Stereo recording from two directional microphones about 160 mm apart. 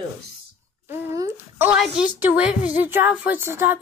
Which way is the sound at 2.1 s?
10° right (ahead or behind).